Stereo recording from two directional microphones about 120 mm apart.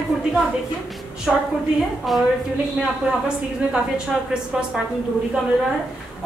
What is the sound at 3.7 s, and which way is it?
Speech, 5° right (ahead or behind).